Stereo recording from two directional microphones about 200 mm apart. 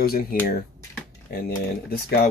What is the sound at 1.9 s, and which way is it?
Speech, 50° left (ahead or behind).